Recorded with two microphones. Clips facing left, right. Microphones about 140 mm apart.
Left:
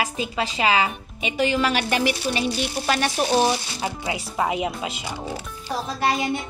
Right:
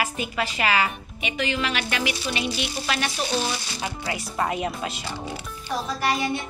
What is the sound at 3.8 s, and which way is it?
A woman's voice, 20° left (ahead or behind).